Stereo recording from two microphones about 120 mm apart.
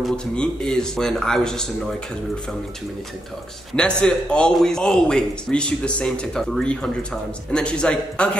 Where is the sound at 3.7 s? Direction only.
10° left (ahead or behind).